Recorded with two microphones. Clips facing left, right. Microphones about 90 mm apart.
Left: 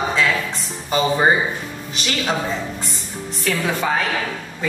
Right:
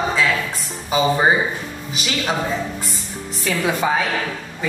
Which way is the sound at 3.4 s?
5° right (ahead or behind).